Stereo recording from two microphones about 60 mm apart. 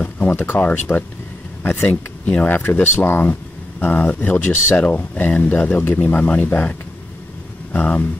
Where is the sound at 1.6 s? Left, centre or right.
Left.